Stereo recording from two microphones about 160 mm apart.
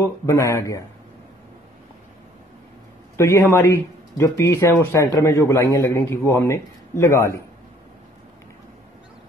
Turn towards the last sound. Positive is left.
turn(degrees=15)  # may be behind; listen again after turning